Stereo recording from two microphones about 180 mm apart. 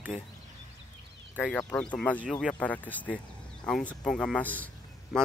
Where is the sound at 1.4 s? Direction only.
5° left (ahead or behind).